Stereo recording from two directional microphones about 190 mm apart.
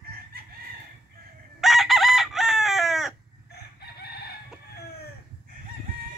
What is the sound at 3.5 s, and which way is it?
Chicken, 55° left (ahead or behind).